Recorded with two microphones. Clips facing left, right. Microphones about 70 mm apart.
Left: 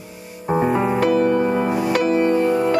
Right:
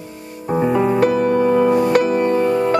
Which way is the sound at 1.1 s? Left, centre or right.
Left.